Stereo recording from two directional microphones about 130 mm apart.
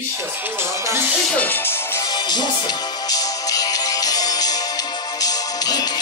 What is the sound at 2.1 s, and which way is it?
Music, 35° left (ahead or behind).